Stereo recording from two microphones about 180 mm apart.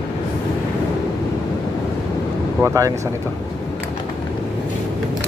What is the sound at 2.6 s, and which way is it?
Speech, 20° right (ahead or behind).